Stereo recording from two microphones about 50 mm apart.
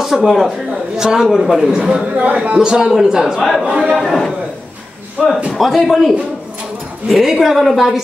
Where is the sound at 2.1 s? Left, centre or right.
Right.